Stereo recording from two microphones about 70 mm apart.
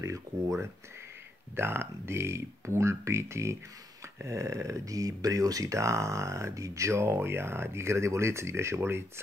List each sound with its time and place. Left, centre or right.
0.0 s speech: right
1.6 s speech: right